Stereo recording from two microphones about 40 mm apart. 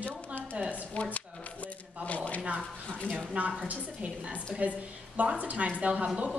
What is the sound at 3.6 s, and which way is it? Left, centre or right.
A woman's voice, right.